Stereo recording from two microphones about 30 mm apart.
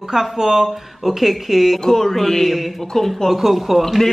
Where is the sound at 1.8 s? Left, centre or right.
Centre.